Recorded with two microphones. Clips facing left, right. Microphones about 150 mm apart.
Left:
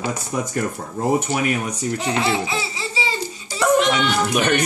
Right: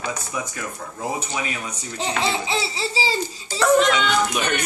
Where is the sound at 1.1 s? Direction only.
60° left (ahead or behind).